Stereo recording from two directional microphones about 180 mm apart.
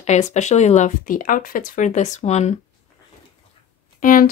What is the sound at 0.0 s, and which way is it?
Speech, 40° left (ahead or behind).